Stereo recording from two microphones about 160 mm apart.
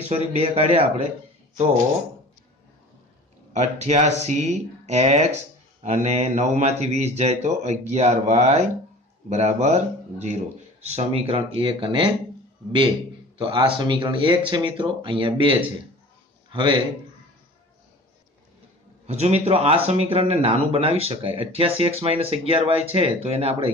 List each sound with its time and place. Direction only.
0.1 s a man's voice: 40° right (ahead or behind)
3.5 s a man's voice: 45° right (ahead or behind)
13.4 s a man's voice: 30° right (ahead or behind)
19.0 s a man's voice: 40° right (ahead or behind)